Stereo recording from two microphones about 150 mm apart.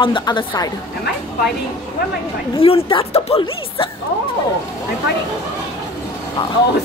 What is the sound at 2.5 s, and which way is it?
Speech, 40° left (ahead or behind).